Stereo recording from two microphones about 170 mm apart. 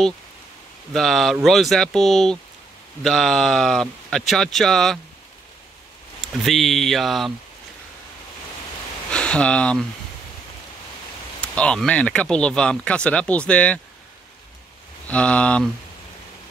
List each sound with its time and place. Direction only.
0.9 s speech: centre (ahead or behind)
6.2 s speech: centre (ahead or behind)
9.1 s speech: 5° left (ahead or behind)
11.4 s speech: 5° left (ahead or behind)
15.0 s speech: 5° left (ahead or behind)